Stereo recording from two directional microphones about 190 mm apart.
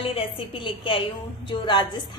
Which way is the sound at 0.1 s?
30° left (ahead or behind).